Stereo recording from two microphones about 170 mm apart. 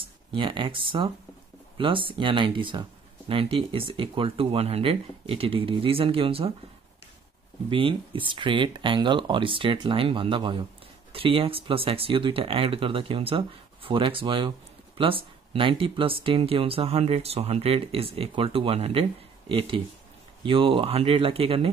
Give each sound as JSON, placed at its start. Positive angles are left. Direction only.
{"t": 0.0, "sound": "speech", "side_deg": -30}
{"t": 7.7, "sound": "speech", "side_deg": -30}
{"t": 20.4, "sound": "speech", "side_deg": -30}